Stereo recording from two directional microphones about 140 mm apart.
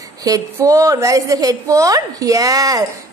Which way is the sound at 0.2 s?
25° right (ahead or behind).